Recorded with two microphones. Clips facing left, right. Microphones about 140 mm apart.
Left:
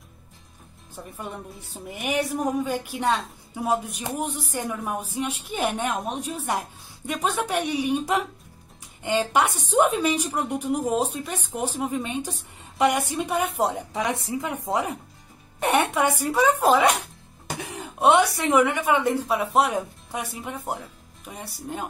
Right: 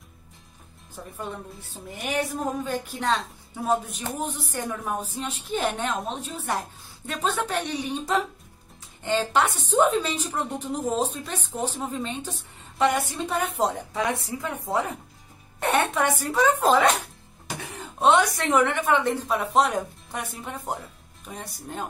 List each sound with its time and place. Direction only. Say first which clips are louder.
1.1 s a woman's voice: right 1 dB; 15° left (ahead or behind)